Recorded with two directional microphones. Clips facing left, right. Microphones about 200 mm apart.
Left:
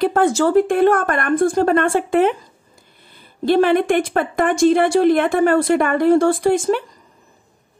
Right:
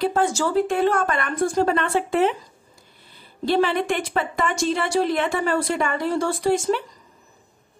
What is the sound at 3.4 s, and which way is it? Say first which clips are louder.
A woman's voice: left 6 dB; 55° left (ahead or behind).